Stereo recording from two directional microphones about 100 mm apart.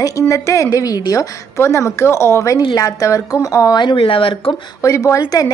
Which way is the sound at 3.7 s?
60° left (ahead or behind).